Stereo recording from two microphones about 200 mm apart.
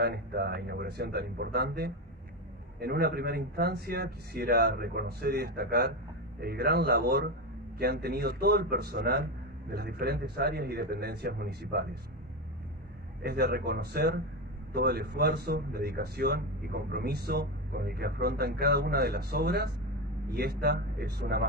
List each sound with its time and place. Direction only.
0.0 s speech: 55° right (ahead or behind)
13.2 s speech: 55° right (ahead or behind)